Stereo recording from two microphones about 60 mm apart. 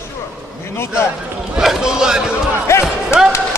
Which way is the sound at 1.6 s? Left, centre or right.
Centre.